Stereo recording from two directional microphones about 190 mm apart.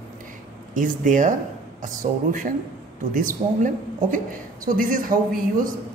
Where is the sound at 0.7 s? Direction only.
40° right (ahead or behind).